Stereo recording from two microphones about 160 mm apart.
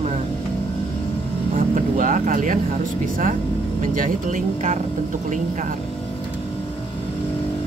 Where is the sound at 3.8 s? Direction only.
55° right (ahead or behind).